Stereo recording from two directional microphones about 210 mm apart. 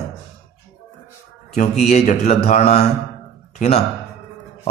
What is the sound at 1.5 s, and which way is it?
A man's voice, 35° left (ahead or behind).